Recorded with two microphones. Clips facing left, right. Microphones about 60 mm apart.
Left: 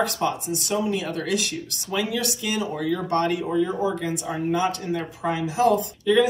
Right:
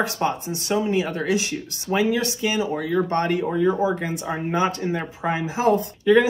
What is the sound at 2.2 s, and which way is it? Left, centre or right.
Speech, right.